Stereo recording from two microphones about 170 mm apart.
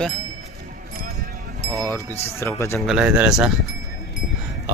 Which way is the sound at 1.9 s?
15° left (ahead or behind).